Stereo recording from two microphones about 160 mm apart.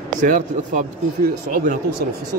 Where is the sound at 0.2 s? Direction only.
55° right (ahead or behind).